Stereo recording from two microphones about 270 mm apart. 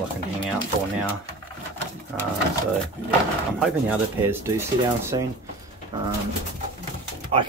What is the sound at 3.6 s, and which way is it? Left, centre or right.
Speech, centre.